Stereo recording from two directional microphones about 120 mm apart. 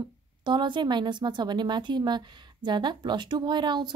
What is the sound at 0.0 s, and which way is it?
A woman's voice, 40° right (ahead or behind).